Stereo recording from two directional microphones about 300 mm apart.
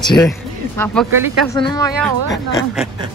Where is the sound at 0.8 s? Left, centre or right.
Centre.